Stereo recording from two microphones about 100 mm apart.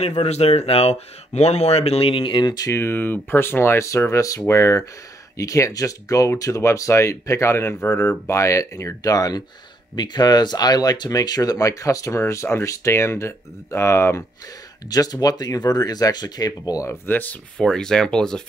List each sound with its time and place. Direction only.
0.0 s speech: 90° left; by 2.7 s 45° left (ahead or behind)
2.7 s speech: 25° left (ahead or behind)
14.9 s speech: 40° left (ahead or behind); by 17.6 s 15° left (ahead or behind)
17.6 s speech: 5° left (ahead or behind)